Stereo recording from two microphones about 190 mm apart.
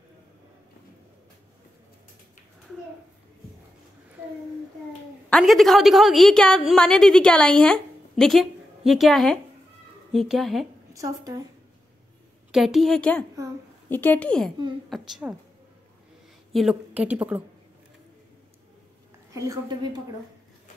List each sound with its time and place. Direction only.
5.3 s a woman's voice: centre (ahead or behind)
10.9 s a woman's voice: 20° right (ahead or behind)
12.4 s a woman's voice: centre (ahead or behind)
16.5 s a woman's voice: 5° right (ahead or behind)
19.3 s a woman's voice: 15° right (ahead or behind)